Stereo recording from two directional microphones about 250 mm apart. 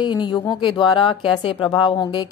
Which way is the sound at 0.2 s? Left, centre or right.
Centre.